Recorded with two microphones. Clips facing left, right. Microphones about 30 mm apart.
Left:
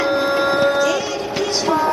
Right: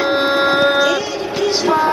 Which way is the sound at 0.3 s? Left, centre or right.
Right.